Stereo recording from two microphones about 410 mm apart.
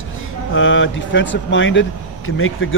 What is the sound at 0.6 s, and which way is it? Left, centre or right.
Speech, left.